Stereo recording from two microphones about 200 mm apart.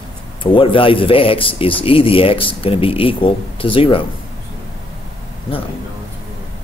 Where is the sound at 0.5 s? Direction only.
25° left (ahead or behind).